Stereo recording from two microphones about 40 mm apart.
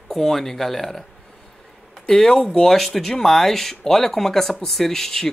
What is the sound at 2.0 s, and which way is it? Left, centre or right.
Speech, centre.